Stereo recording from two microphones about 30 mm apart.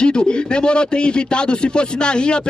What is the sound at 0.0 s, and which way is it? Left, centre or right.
A man's voice, left.